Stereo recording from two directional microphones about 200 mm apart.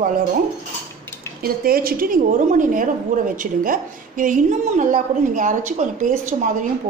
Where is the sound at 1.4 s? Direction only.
45° right (ahead or behind).